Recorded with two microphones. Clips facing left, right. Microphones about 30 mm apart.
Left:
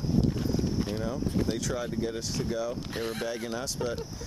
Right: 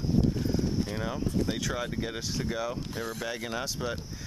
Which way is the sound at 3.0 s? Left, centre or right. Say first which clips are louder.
Left 2 dB; left.